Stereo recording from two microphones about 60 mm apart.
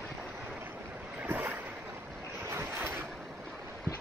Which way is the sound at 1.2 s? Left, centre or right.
Right.